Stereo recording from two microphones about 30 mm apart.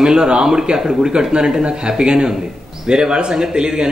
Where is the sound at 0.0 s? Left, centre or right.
Centre; by 2.0 s right.